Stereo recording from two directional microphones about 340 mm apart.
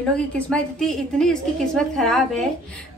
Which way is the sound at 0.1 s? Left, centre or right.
Centre.